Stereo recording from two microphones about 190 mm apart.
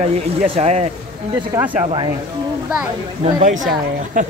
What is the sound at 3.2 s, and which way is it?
A woman's voice, 40° right (ahead or behind).